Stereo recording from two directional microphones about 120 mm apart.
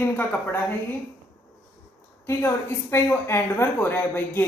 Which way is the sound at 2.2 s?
20° left (ahead or behind).